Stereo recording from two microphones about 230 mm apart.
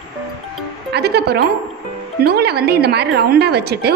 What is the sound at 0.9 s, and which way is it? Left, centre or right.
A woman's voice, right.